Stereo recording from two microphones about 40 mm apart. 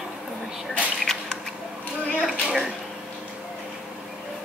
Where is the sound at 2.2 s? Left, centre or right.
Centre.